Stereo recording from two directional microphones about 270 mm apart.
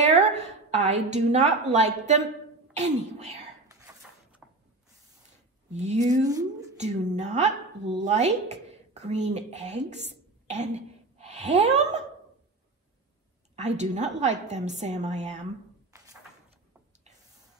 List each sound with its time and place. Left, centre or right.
0.0 s a woman's voice: right
3.6 s dishes: centre
5.7 s a woman's voice: right
6.2 s a woman's voice: centre
6.8 s a woman's voice: right
13.6 s a woman's voice: right